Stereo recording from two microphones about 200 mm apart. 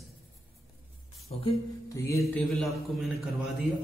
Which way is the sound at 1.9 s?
15° left (ahead or behind).